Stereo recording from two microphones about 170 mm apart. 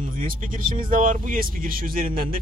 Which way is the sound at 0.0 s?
55° right (ahead or behind).